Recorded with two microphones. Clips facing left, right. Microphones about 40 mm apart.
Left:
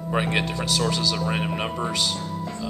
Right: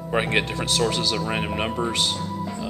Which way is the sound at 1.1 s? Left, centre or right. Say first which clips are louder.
Right 1 dB; centre.